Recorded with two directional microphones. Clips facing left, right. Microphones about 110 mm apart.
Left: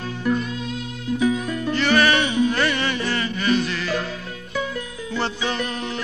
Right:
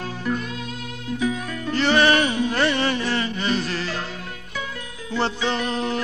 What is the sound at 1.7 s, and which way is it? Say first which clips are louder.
Music: right 1 dB; 30° right (ahead or behind).